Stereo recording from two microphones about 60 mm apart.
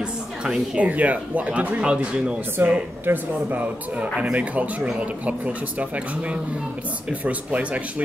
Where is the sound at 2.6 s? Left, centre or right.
Right.